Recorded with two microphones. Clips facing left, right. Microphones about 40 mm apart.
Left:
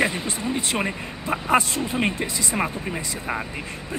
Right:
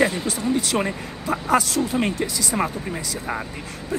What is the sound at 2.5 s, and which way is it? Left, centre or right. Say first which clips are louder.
Speech: right 1 dB; centre.